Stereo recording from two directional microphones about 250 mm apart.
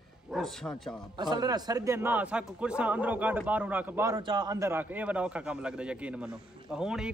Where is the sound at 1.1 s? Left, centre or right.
Centre.